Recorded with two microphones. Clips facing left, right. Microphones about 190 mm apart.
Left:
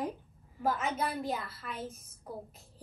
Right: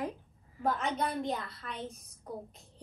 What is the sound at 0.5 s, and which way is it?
A woman's voice, centre (ahead or behind).